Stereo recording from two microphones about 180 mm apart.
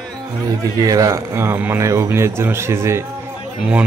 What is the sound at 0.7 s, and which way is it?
Speech, 20° right (ahead or behind).